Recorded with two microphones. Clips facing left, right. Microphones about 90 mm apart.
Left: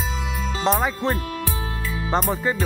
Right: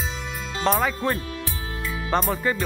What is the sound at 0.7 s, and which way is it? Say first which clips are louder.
Music: even; 20° left (ahead or behind).